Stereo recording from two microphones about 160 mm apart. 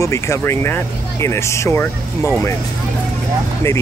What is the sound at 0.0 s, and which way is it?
Speech, 20° left (ahead or behind).